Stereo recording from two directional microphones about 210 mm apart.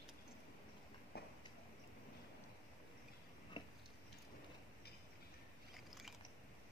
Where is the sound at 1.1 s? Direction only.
50° left (ahead or behind).